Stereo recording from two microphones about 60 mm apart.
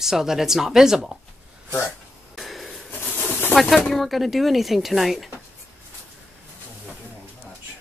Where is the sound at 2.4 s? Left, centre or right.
Centre.